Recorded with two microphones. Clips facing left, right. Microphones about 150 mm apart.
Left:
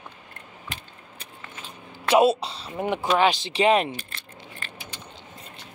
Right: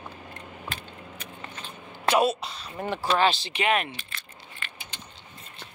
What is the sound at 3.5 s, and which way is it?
Speech, 30° left (ahead or behind).